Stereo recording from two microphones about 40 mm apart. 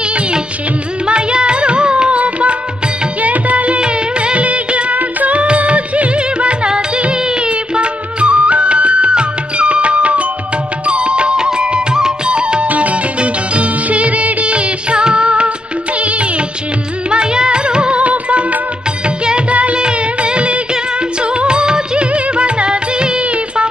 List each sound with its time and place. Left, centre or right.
1.0 s music: right
3.2 s music of bollywood: right
4.9 s music: right
12.6 s music: right
16.0 s music of bollywood: right
17.1 s music: right
19.0 s music: right